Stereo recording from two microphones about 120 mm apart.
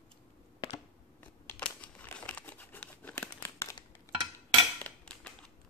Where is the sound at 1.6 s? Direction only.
10° left (ahead or behind).